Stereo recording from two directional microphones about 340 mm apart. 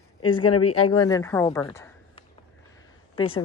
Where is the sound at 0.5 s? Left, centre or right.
Left.